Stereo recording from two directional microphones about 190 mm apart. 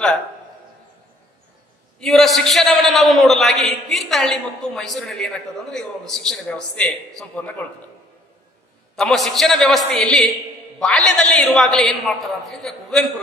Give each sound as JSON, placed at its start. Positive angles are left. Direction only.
{"t": 2.0, "sound": "a man's voice", "side_deg": 0}
{"t": 8.9, "sound": "a man's voice", "side_deg": 0}